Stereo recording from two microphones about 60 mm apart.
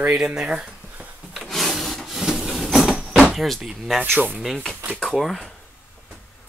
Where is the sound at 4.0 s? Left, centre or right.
Right.